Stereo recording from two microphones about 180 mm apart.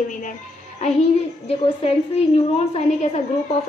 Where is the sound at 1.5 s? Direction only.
30° left (ahead or behind).